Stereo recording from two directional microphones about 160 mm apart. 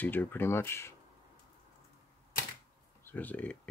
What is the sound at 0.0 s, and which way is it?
Speech, 10° left (ahead or behind).